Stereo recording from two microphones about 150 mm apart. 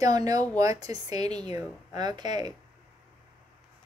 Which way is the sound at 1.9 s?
25° right (ahead or behind).